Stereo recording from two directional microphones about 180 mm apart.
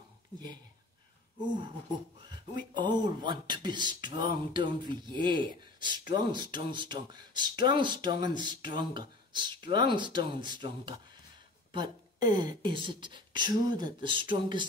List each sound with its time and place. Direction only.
2.2 s speech: 25° right (ahead or behind)